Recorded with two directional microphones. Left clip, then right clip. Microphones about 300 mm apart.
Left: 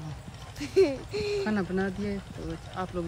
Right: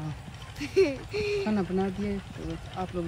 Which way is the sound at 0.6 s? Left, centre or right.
Left.